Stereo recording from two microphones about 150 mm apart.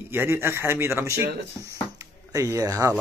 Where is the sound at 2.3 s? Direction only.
20° right (ahead or behind).